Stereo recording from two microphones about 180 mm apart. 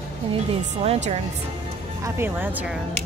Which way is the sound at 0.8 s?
40° right (ahead or behind).